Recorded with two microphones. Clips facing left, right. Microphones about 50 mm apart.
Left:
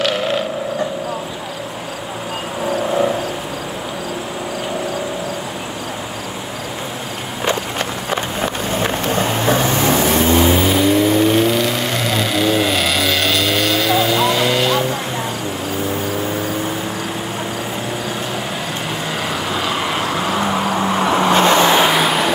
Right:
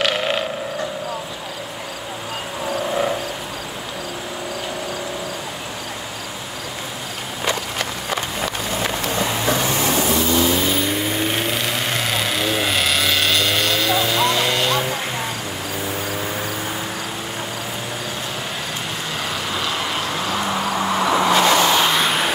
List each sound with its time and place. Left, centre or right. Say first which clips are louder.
8.4 s vehicle: left 4 dB; left
10.7 s vehicle: left 7 dB; centre
21.0 s vehicle: left 2 dB; left
21.9 s vehicle: left 3 dB; centre